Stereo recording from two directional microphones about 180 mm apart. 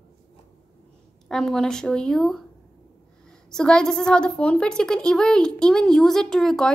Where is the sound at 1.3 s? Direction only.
Centre (ahead or behind).